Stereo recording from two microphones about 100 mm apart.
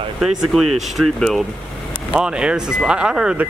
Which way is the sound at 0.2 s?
5° right (ahead or behind).